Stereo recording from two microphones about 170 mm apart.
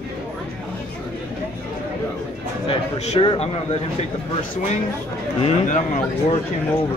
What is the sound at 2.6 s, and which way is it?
Speech, 40° left (ahead or behind).